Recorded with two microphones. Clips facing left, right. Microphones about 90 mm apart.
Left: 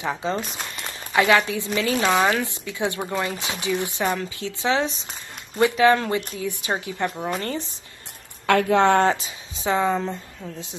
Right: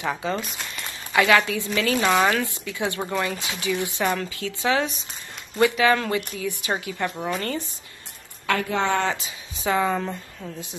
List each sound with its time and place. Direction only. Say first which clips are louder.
0.0 s speech: left 1 dB; 20° left (ahead or behind)
2.0 s speech: even; 5° left (ahead or behind)
2.3 s speech: even; 20° left (ahead or behind)
6.7 s speech: left 1 dB; 15° left (ahead or behind)
8.5 s a woman's voice: left 6 dB; 60° left (ahead or behind)
9.0 s speech: left 5 dB; 35° left (ahead or behind)
9.6 s speech: left 1 dB; 25° left (ahead or behind)
9.9 s speech: left 1 dB; centre (ahead or behind)